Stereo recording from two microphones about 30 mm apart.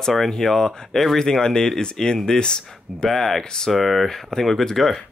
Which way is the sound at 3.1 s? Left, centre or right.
Centre.